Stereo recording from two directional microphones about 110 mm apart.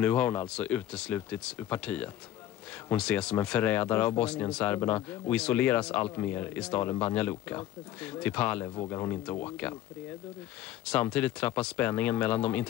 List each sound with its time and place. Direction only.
0.0 s speech: 15° left (ahead or behind)
8.8 s speech: 25° left (ahead or behind)
9.3 s speech: 15° left (ahead or behind)
10.9 s speech: 10° left (ahead or behind)